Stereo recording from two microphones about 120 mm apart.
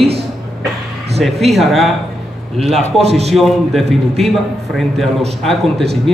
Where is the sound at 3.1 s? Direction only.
60° right (ahead or behind).